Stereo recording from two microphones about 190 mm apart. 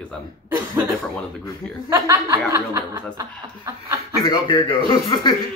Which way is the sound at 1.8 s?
15° right (ahead or behind).